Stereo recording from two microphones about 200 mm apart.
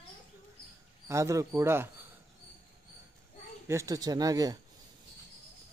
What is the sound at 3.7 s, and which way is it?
Speech, 15° right (ahead or behind).